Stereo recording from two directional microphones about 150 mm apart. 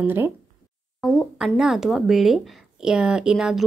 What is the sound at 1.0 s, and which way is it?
Speech, centre (ahead or behind).